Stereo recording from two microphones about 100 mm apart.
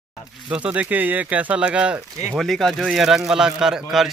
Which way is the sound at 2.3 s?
Centre (ahead or behind).